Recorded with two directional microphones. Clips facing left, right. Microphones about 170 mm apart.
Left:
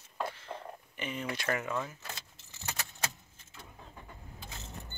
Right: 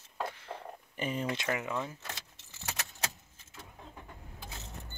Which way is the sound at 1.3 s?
15° right (ahead or behind).